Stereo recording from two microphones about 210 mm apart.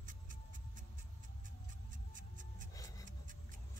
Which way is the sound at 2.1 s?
40° right (ahead or behind).